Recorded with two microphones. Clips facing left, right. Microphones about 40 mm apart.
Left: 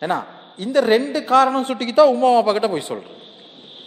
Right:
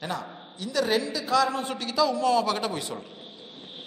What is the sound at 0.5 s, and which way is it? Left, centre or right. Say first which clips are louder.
A woman's voice: left 9 dB; left.